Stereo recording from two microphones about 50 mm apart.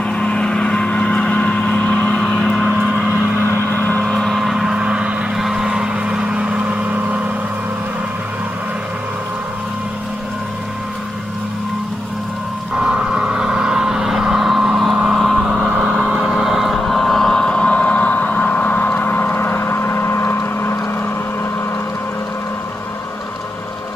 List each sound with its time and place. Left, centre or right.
0.1 s vehicle: centre
3.4 s vehicle: left
4.0 s vehicle: centre
4.4 s vehicle: centre
12.7 s vehicle: centre; by 20.7 s left